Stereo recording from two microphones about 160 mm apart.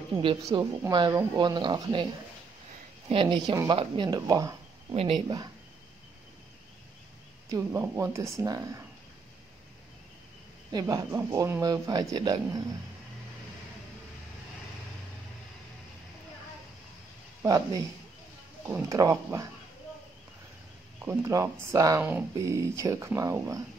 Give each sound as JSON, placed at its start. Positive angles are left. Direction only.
{"t": 0.5, "sound": "speech", "side_deg": -25}
{"t": 3.1, "sound": "speech", "side_deg": -30}
{"t": 4.1, "sound": "speech", "side_deg": -20}
{"t": 4.9, "sound": "speech", "side_deg": -35}
{"t": 7.5, "sound": "speech", "side_deg": -15}
{"t": 10.7, "sound": "speech", "side_deg": -20}
{"t": 17.4, "sound": "speech", "side_deg": -20}
{"t": 21.0, "sound": "speech", "side_deg": -15}